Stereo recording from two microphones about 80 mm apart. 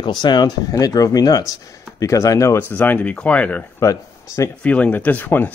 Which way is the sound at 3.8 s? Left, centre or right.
Left.